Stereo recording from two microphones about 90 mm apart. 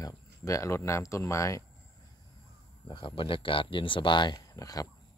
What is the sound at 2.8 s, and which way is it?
Speech, 70° left (ahead or behind).